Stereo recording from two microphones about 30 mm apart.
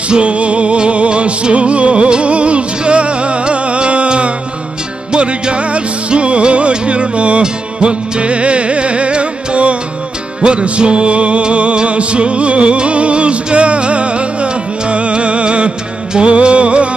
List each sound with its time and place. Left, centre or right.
0.1 s music: right